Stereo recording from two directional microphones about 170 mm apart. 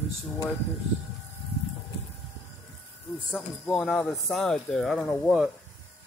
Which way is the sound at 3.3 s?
5° left (ahead or behind).